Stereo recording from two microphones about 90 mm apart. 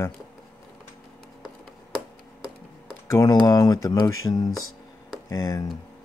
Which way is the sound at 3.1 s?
40° left (ahead or behind).